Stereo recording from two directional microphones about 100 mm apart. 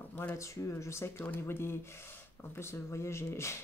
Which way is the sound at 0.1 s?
20° left (ahead or behind).